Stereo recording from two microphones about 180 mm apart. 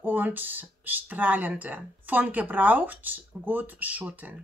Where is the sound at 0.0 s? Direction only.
10° right (ahead or behind).